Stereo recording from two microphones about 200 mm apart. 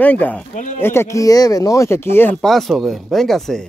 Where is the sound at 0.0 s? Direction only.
10° left (ahead or behind).